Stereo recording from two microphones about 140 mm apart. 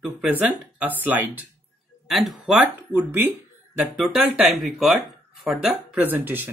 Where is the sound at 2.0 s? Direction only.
Centre (ahead or behind).